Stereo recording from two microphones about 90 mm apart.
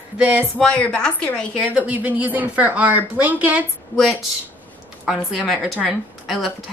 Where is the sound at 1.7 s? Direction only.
15° right (ahead or behind).